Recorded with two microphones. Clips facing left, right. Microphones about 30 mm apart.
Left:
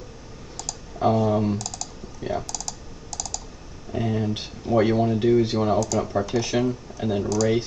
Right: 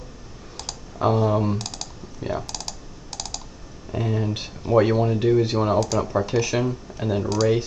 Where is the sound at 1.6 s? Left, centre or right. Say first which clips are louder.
Even; right.